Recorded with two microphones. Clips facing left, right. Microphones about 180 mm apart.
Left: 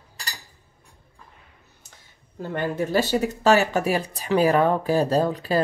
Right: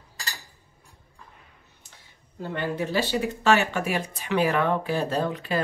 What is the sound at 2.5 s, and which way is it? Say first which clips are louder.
Speech: left 4 dB; 45° left (ahead or behind).